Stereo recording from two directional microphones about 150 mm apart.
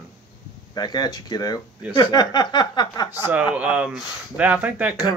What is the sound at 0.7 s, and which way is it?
Speech, 30° left (ahead or behind).